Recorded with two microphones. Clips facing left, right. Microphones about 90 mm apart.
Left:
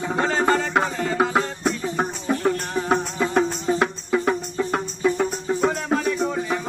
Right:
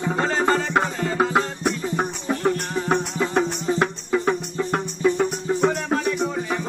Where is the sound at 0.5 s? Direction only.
Centre (ahead or behind).